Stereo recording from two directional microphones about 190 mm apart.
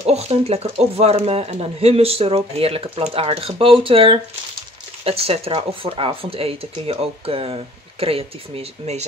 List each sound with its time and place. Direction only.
0.0 s speech: 35° right (ahead or behind)